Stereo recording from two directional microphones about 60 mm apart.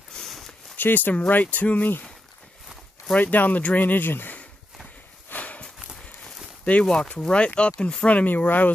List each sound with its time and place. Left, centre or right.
0.7 s speech: left
3.2 s speech: left
5.3 s horse: left
6.2 s a sound: centre
7.1 s speech: centre